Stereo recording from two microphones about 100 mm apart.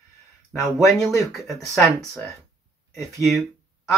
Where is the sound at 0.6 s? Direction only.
Centre (ahead or behind).